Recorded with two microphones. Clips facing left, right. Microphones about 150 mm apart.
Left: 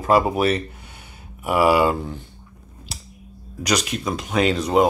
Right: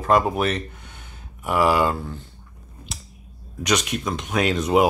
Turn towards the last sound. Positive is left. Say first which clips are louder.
# left 1 dB
turn(degrees=0)  # may be behind; listen again after turning